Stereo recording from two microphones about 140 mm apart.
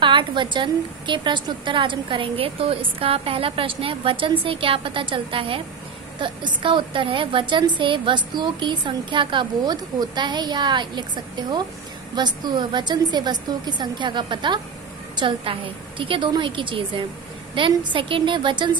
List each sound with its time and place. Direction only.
0.0 s a woman's voice: 35° right (ahead or behind)